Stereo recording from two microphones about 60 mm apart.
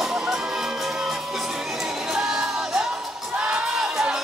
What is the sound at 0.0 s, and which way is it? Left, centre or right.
Music, centre.